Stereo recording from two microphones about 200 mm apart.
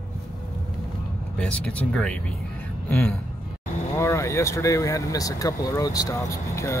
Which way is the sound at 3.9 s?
15° left (ahead or behind).